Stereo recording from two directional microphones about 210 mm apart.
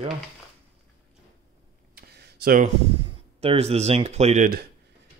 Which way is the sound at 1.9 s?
50° right (ahead or behind).